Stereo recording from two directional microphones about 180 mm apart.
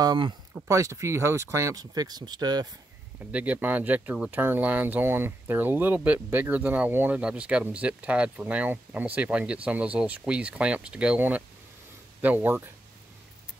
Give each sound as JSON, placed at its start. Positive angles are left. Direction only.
{"t": 0.0, "sound": "speech", "side_deg": -25}
{"t": 3.3, "sound": "speech", "side_deg": -10}